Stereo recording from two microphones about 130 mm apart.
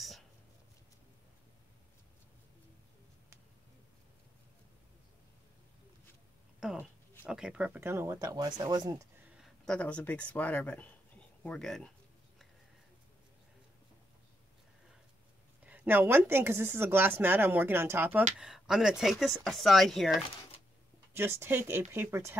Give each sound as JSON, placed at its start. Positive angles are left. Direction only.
{"t": 6.6, "sound": "speech", "side_deg": -5}
{"t": 9.4, "sound": "speech", "side_deg": 5}
{"t": 15.6, "sound": "speech", "side_deg": -10}
{"t": 18.4, "sound": "speech", "side_deg": -5}
{"t": 21.1, "sound": "speech", "side_deg": -20}